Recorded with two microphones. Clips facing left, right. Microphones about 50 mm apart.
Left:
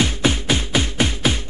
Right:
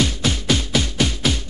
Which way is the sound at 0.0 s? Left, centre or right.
Left.